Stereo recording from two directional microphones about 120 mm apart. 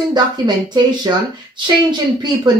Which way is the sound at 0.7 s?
35° right (ahead or behind).